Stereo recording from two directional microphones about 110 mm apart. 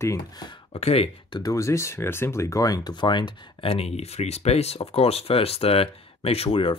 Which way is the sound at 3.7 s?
70° left (ahead or behind).